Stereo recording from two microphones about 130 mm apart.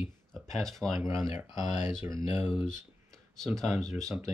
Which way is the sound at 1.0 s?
25° right (ahead or behind).